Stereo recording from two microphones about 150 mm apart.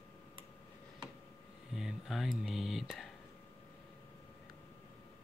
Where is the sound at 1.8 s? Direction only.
Centre (ahead or behind).